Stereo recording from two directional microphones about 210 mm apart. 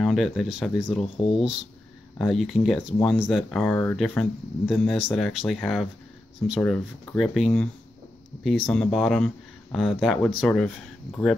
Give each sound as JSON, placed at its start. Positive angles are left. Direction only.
{"t": 0.0, "sound": "speech", "side_deg": 0}
{"t": 1.1, "sound": "speech", "side_deg": 25}
{"t": 2.1, "sound": "speech", "side_deg": 0}
{"t": 8.6, "sound": "speech", "side_deg": 0}